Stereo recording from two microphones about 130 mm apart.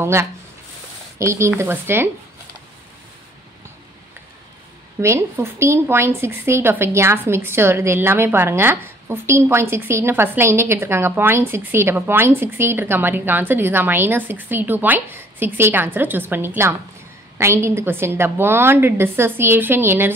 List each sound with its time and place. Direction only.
0.0 s a woman's voice: 20° right (ahead or behind)
5.0 s a woman's voice: 20° right (ahead or behind)